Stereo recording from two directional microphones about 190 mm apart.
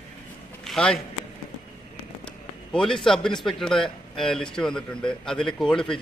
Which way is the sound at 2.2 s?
5° left (ahead or behind).